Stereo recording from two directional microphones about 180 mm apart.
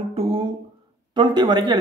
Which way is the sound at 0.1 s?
30° right (ahead or behind).